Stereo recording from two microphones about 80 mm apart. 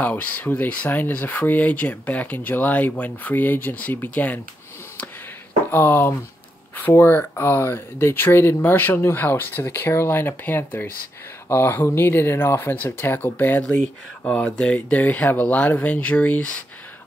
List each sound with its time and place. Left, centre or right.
0.0 s speech: centre
5.7 s speech: left